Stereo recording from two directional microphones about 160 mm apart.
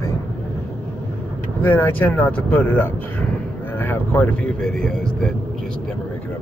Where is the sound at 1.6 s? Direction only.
10° left (ahead or behind).